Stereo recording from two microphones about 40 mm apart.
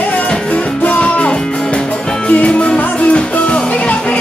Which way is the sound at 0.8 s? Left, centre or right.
Left.